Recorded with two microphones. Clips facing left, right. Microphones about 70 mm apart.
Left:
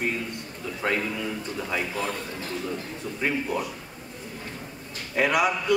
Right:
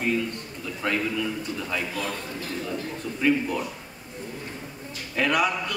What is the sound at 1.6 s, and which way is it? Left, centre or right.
Speech, left.